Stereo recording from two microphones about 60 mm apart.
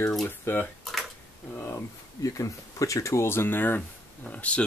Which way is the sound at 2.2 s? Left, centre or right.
Left.